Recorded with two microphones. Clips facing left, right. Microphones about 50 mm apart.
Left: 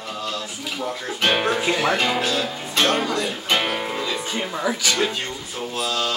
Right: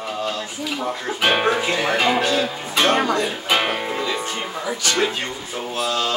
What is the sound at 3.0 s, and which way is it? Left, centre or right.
Speech, right.